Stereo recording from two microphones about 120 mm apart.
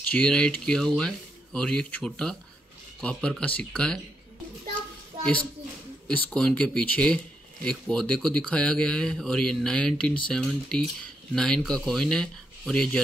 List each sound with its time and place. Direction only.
0.1 s speech: 10° left (ahead or behind)
6.0 s speech: 10° left (ahead or behind)